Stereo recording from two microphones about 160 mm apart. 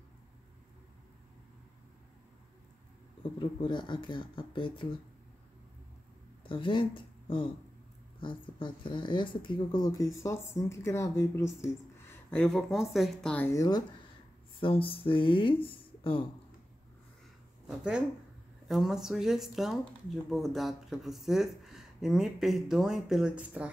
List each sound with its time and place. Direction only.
3.3 s speech: 30° left (ahead or behind)
6.4 s speech: 30° left (ahead or behind)
12.3 s speech: 5° left (ahead or behind)
13.5 s speech: 25° left (ahead or behind)
14.6 s speech: 35° left (ahead or behind)
15.8 s a sound: 35° left (ahead or behind)
17.6 s speech: 5° right (ahead or behind)